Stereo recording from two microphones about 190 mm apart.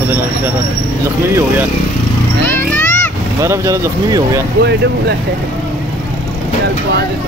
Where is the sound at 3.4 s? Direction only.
15° right (ahead or behind).